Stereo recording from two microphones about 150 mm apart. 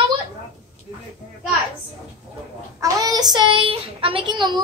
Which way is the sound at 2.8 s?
25° right (ahead or behind).